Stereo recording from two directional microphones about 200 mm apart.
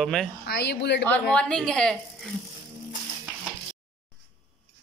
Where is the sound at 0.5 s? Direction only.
55° left (ahead or behind).